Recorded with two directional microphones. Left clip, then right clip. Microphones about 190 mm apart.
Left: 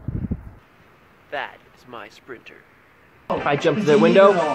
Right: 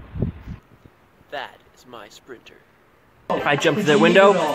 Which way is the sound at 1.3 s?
10° left (ahead or behind).